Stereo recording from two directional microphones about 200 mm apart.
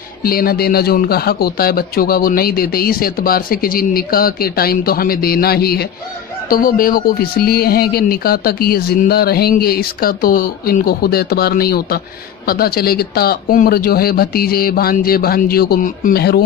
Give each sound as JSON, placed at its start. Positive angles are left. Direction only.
{"t": 0.2, "sound": "a man's voice", "side_deg": 45}